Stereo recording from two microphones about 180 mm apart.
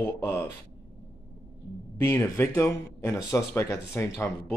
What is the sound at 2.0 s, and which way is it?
Speech, 15° left (ahead or behind).